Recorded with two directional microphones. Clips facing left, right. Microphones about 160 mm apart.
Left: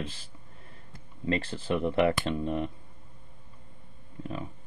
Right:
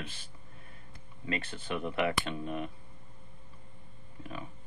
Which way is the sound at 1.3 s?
30° left (ahead or behind).